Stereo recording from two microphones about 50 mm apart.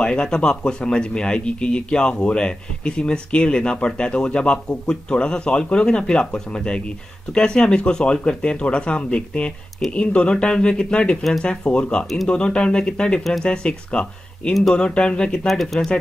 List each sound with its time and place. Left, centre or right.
0.0 s speech: centre
15.4 s speech: centre